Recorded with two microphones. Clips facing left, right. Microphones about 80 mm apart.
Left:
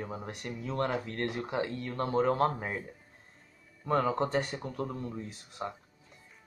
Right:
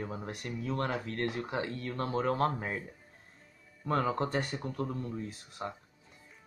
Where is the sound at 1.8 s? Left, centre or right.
Centre.